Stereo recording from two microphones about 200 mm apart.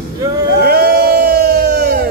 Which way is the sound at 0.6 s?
50° right (ahead or behind).